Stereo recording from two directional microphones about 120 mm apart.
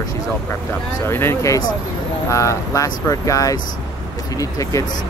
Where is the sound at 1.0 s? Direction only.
20° left (ahead or behind).